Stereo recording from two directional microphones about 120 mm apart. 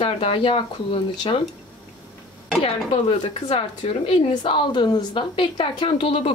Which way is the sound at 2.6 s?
50° left (ahead or behind).